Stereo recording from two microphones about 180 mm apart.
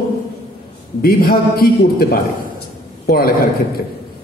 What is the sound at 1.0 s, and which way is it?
A man's voice, 55° left (ahead or behind).